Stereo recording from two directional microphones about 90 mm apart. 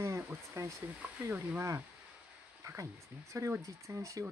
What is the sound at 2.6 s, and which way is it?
Speech, 35° right (ahead or behind).